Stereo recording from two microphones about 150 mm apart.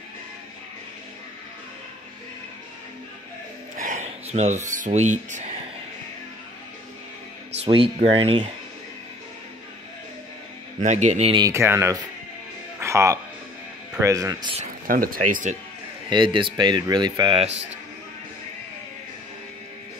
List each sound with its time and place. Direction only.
3.7 s a sound: 60° right (ahead or behind)
4.6 s speech: 60° right (ahead or behind)
7.5 s speech: 40° right (ahead or behind)
10.8 s a man's voice: 55° right (ahead or behind)
11.3 s speech: 20° right (ahead or behind)
14.9 s speech: 75° right (ahead or behind)
16.1 s speech: 35° right (ahead or behind)